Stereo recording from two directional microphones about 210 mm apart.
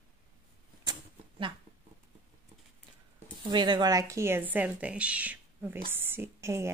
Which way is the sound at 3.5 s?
20° right (ahead or behind).